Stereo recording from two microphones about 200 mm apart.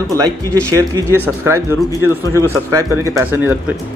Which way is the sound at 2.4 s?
10° left (ahead or behind).